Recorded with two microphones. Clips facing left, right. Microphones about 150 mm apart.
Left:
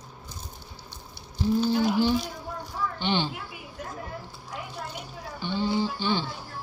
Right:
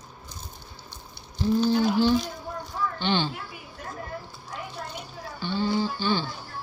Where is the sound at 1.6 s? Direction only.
10° left (ahead or behind).